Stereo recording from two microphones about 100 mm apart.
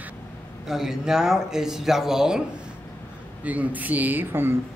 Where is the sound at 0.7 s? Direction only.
5° right (ahead or behind).